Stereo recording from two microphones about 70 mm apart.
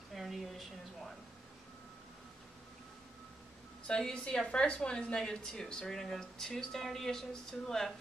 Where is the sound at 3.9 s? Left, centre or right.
Centre.